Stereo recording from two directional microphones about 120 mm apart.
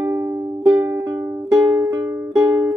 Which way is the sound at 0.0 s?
20° right (ahead or behind).